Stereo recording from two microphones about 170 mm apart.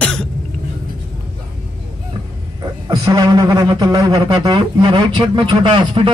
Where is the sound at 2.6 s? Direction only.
20° right (ahead or behind).